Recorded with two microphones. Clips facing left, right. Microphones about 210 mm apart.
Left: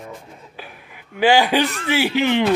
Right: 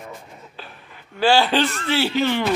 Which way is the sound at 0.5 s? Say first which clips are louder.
Left 2 dB; 10° left (ahead or behind).